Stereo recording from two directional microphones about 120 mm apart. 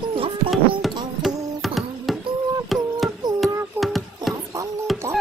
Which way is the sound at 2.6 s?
Centre (ahead or behind).